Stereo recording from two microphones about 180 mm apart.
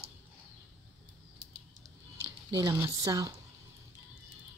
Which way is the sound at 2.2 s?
25° right (ahead or behind).